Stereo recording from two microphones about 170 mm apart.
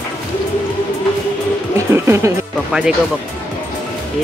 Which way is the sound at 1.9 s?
15° right (ahead or behind).